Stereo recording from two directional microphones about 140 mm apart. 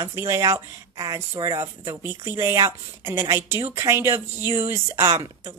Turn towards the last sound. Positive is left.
turn(degrees=-20)  # may be behind; listen again after turning